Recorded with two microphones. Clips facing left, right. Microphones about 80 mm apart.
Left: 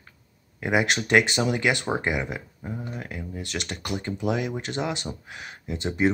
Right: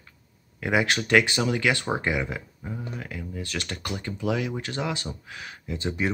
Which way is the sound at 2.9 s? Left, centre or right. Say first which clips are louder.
Even; left.